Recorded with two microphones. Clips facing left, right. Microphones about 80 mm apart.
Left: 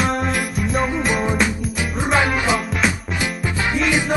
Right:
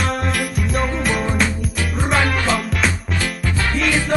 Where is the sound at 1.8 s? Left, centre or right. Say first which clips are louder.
Even; centre.